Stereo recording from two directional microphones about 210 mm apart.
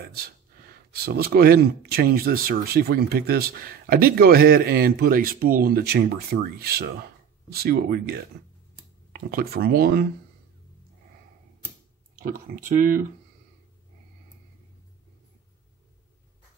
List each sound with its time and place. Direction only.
0.0 s speech: 45° right (ahead or behind)
12.6 s speech: 45° right (ahead or behind)